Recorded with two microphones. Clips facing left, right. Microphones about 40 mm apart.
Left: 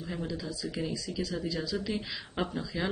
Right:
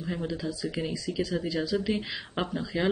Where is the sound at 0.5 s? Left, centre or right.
Right.